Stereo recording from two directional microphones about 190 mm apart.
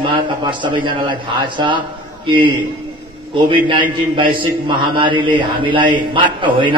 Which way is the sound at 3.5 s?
25° right (ahead or behind).